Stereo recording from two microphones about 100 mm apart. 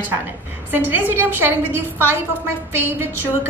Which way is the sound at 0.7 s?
20° right (ahead or behind).